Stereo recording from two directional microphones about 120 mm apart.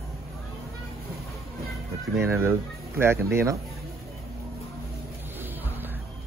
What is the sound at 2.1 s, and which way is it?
Speech, 20° right (ahead or behind).